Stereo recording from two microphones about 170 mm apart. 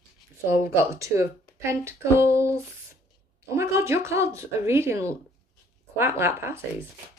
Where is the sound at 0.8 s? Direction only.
20° right (ahead or behind).